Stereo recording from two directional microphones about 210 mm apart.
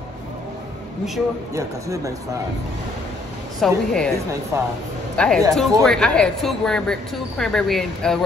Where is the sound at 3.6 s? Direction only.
5° left (ahead or behind).